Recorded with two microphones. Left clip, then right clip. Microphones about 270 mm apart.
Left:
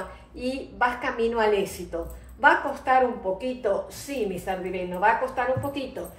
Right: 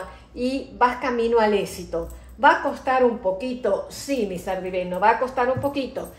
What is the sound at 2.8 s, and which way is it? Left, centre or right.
A woman's voice, right.